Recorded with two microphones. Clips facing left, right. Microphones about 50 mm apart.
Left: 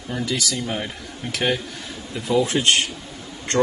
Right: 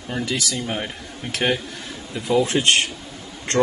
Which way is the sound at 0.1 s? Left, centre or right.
Right.